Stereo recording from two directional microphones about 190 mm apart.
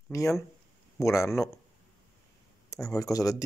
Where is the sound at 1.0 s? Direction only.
15° left (ahead or behind).